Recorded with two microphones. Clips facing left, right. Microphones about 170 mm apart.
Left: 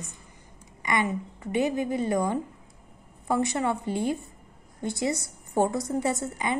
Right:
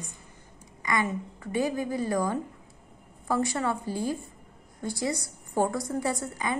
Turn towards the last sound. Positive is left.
turn(degrees=20)  # may be behind; listen again after turning